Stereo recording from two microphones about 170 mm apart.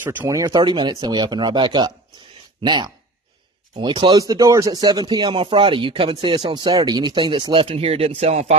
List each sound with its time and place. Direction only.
0.0 s speech: 10° right (ahead or behind); by 8.5 s 40° right (ahead or behind)